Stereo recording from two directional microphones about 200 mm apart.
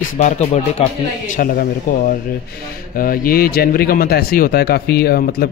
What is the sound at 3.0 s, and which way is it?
A man's voice, 45° left (ahead or behind).